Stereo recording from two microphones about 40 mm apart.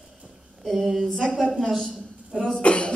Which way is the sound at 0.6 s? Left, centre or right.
Centre.